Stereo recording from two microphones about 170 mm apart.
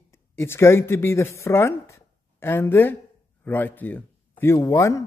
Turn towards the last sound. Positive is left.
turn(degrees=20)  # may be behind; listen again after turning